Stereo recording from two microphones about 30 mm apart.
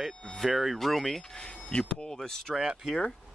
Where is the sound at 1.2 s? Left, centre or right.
Centre.